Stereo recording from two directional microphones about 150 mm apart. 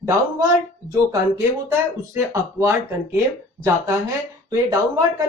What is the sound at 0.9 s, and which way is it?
Speech, 25° right (ahead or behind).